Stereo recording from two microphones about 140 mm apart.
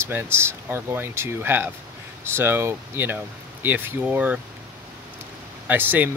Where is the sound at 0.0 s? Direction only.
15° right (ahead or behind).